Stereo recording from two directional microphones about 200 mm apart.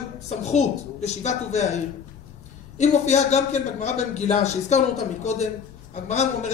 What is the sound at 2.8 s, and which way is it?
A man's voice, 35° left (ahead or behind).